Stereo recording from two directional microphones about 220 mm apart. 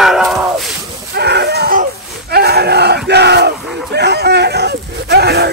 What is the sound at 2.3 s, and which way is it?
Battle cry, 45° right (ahead or behind).